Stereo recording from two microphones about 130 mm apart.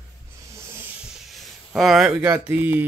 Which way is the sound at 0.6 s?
20° right (ahead or behind).